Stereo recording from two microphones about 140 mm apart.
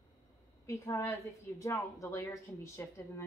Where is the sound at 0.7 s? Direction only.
20° left (ahead or behind).